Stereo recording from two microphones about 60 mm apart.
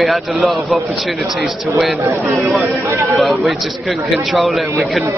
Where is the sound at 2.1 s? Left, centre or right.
Right.